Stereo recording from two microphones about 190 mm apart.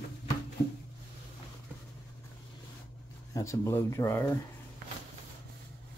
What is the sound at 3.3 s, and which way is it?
Speech, 15° left (ahead or behind).